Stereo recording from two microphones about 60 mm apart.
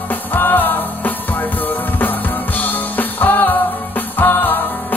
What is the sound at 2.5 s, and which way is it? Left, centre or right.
Music, left.